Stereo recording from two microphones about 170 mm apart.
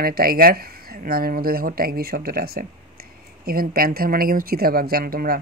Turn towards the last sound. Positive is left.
turn(degrees=-60)  # may be behind; listen again after turning